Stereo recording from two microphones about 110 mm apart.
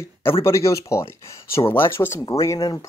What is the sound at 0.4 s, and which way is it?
Speech, 25° left (ahead or behind).